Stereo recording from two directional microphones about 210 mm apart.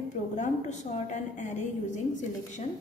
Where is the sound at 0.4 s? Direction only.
35° left (ahead or behind).